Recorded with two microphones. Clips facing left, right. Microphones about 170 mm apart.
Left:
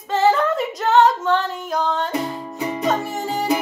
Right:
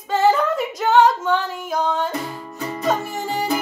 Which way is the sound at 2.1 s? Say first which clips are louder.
Left 3 dB; 15° left (ahead or behind).